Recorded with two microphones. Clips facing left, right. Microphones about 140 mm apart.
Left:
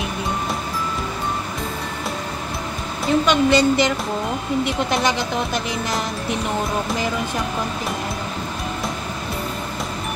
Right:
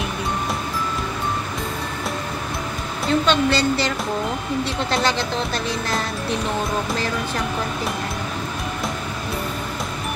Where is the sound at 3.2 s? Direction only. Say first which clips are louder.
Left 4 dB; 15° left (ahead or behind).